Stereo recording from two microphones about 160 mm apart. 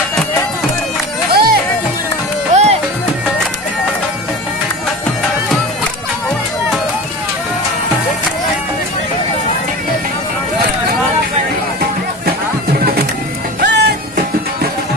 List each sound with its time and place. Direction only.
1.3 s music: 75° right (ahead or behind)
2.5 s music: 45° right (ahead or behind)
13.6 s music: 90° right